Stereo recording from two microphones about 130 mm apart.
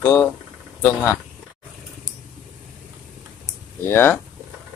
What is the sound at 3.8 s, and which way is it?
Speech, 15° left (ahead or behind).